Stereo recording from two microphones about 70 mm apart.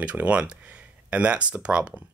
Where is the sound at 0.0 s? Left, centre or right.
Centre.